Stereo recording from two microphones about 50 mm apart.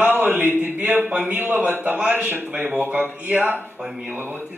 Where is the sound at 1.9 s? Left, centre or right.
Right.